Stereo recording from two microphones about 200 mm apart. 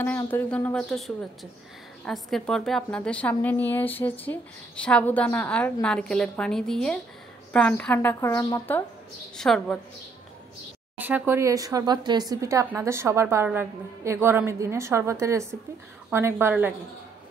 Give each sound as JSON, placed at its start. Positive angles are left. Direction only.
{"t": 0.0, "sound": "a woman's voice", "side_deg": 10}
{"t": 11.0, "sound": "speech", "side_deg": -10}